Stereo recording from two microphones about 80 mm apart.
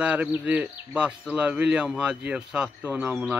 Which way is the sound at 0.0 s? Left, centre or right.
Centre.